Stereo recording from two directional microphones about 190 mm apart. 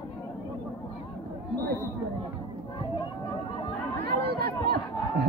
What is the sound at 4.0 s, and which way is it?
Chatter, 55° right (ahead or behind).